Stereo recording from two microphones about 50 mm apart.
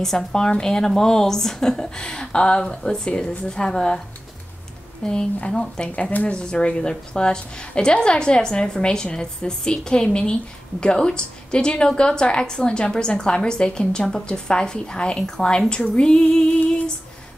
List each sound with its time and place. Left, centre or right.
0.0 s a woman's voice: centre
5.0 s a woman's voice: centre
6.3 s a woman's voice: centre